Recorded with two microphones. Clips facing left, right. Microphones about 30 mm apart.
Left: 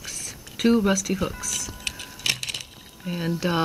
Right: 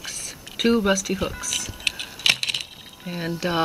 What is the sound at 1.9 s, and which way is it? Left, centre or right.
Typing, right.